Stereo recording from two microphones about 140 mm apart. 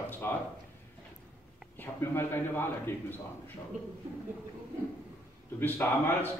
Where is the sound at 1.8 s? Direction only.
15° left (ahead or behind).